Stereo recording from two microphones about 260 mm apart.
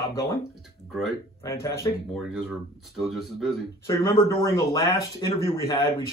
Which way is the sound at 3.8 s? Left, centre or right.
Centre.